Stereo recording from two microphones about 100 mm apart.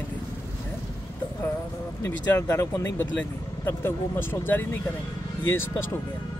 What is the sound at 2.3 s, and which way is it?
Speech, 30° left (ahead or behind).